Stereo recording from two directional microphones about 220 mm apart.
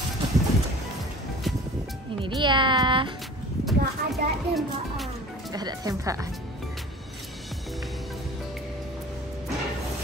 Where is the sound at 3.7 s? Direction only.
Centre (ahead or behind).